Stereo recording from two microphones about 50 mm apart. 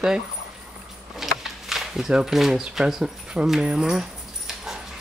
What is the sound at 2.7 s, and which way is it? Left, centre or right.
Speech, centre.